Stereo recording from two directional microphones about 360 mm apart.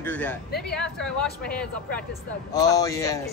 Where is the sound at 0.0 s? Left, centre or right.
Centre.